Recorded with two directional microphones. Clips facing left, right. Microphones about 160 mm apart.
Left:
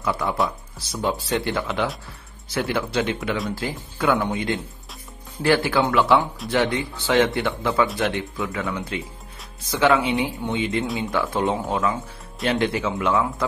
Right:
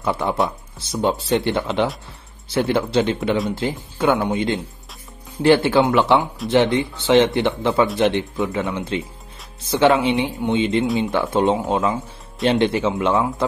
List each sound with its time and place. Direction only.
0.0 s speech: 25° right (ahead or behind)